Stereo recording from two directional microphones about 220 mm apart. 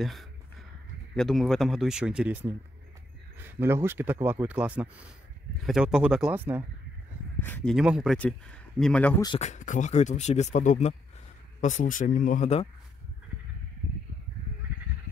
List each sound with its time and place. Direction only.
0.0 s a sound: centre (ahead or behind)
1.1 s speech: centre (ahead or behind)
7.4 s speech: 5° left (ahead or behind)
9.4 s speech: 35° left (ahead or behind)